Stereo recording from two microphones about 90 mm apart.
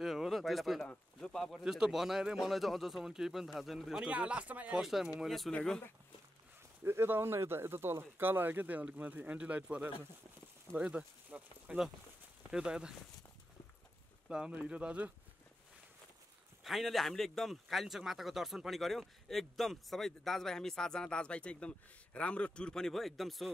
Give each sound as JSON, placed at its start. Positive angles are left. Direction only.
{"t": 0.0, "sound": "a sound", "side_deg": 0}
{"t": 0.8, "sound": "speech", "side_deg": 5}
{"t": 1.6, "sound": "speech", "side_deg": -5}
{"t": 4.8, "sound": "speech", "side_deg": -5}
{"t": 5.5, "sound": "speech", "side_deg": 10}
{"t": 6.8, "sound": "speech", "side_deg": -25}
{"t": 14.3, "sound": "speech", "side_deg": -10}
{"t": 16.6, "sound": "speech", "side_deg": 0}